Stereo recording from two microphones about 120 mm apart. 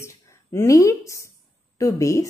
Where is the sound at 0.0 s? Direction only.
20° left (ahead or behind).